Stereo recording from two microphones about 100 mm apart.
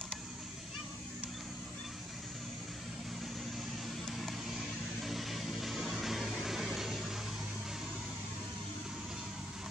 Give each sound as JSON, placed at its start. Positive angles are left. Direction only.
{"t": 4.2, "sound": "vehicle", "side_deg": 0}